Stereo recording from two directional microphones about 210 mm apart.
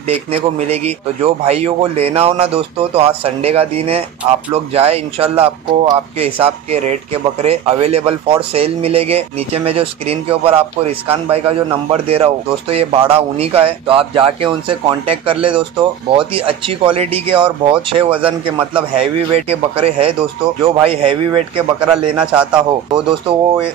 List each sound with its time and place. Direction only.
0.3 s speech: 30° right (ahead or behind)
22.2 s a man's voice: 5° right (ahead or behind)